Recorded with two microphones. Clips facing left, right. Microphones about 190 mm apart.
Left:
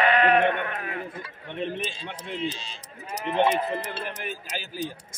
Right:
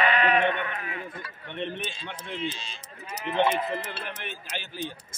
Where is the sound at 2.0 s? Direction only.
35° left (ahead or behind).